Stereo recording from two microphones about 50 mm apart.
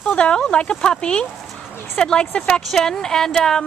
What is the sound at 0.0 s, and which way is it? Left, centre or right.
Speech, left.